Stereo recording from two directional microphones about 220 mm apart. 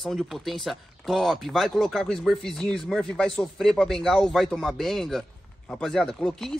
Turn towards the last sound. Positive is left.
turn(degrees=0)  # may be behind; listen again after turning